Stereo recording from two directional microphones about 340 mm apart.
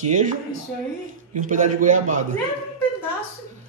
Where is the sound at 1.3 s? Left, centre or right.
Right.